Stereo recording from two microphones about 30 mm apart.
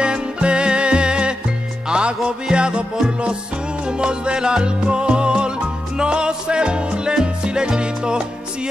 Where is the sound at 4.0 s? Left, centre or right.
Right.